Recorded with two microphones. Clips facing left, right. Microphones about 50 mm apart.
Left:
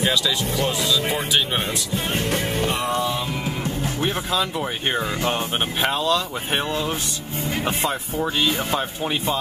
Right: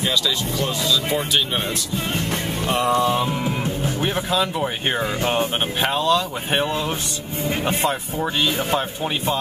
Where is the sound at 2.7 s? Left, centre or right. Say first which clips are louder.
Right 8 dB; right.